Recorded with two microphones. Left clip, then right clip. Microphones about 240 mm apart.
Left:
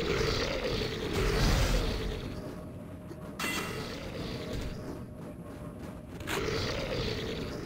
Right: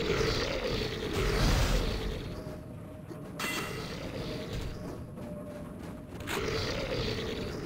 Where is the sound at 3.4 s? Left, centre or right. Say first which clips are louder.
Left 1 dB; centre.